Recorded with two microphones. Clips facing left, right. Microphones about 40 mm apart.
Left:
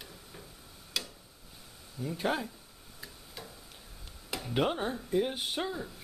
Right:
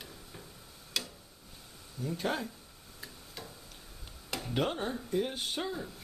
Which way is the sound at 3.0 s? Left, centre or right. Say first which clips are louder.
Even; centre.